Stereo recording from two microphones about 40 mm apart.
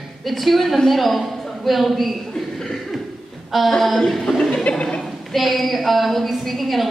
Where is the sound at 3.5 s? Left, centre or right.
Centre.